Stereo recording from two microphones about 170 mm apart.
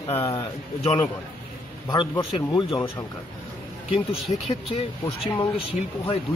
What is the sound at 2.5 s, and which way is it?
Speech, 25° left (ahead or behind).